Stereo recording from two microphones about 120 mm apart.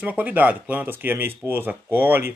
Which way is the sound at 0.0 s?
15° right (ahead or behind).